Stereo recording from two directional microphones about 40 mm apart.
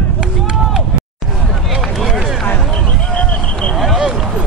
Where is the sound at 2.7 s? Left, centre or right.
Left.